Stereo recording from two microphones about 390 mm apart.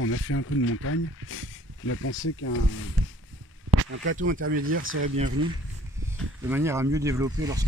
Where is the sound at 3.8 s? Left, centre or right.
Right.